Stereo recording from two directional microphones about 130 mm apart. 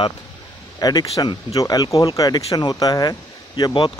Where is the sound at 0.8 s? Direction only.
30° left (ahead or behind).